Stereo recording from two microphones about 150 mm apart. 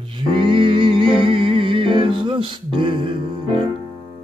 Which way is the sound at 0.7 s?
35° right (ahead or behind).